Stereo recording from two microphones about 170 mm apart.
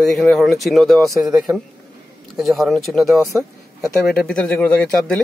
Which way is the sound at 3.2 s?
15° right (ahead or behind).